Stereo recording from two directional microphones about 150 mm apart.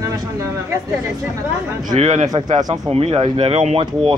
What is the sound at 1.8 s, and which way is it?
A man's voice, 55° right (ahead or behind).